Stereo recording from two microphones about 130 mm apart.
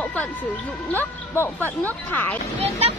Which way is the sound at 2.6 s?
50° right (ahead or behind).